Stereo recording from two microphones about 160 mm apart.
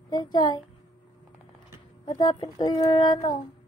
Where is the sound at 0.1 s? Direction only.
25° left (ahead or behind).